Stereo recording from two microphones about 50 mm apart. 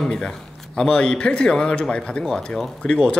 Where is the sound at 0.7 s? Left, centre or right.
Centre.